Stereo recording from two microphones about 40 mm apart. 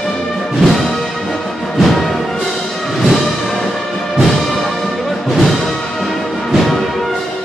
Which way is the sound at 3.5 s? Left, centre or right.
Centre.